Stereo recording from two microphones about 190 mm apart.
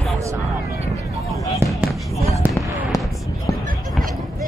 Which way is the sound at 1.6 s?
15° right (ahead or behind).